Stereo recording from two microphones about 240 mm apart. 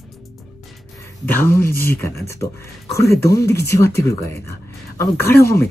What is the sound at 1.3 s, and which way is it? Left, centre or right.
Speech, centre.